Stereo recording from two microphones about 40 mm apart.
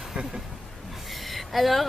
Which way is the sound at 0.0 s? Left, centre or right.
Centre.